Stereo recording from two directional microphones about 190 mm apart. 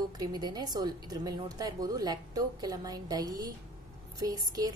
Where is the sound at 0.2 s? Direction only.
20° right (ahead or behind).